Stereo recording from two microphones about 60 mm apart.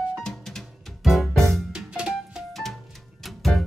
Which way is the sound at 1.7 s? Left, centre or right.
Centre.